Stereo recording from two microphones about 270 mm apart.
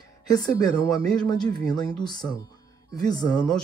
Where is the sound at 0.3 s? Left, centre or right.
Centre.